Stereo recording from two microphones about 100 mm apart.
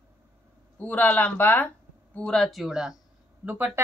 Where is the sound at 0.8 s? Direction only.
15° left (ahead or behind).